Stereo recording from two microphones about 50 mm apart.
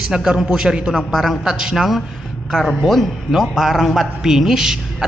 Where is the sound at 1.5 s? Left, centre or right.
Centre.